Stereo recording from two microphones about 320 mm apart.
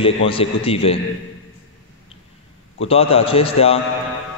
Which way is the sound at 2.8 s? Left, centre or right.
Centre.